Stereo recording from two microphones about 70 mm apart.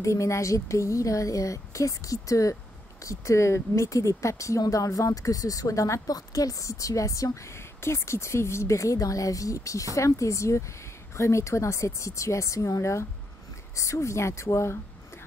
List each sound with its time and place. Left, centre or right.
0.0 s speech: left